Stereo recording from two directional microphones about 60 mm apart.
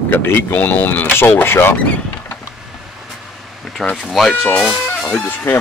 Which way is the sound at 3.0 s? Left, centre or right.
Centre.